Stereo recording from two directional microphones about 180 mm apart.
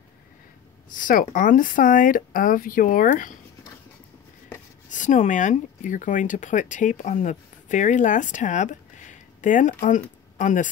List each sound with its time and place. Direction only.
0.8 s speech: 45° left (ahead or behind)
4.8 s speech: 45° left (ahead or behind)